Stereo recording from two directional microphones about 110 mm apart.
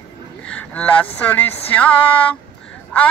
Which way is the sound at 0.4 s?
10° left (ahead or behind).